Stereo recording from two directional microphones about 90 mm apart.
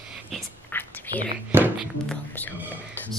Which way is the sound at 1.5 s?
25° right (ahead or behind).